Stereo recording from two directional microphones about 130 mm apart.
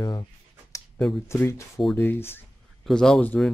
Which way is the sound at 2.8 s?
5° left (ahead or behind).